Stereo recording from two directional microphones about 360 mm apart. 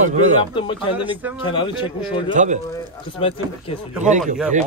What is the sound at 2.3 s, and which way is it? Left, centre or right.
Speech, right.